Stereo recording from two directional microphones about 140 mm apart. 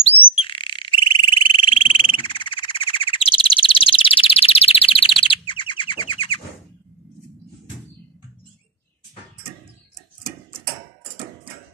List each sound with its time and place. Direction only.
0.3 s frog: 40° left (ahead or behind)
5.2 s bird: 35° left (ahead or behind)